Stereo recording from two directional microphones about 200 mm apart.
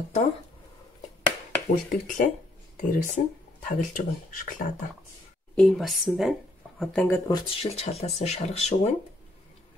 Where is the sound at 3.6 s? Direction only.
45° left (ahead or behind).